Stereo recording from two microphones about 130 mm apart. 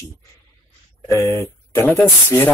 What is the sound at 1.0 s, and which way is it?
Speech, 20° left (ahead or behind).